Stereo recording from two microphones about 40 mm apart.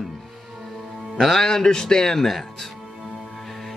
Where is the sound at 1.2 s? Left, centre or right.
Centre.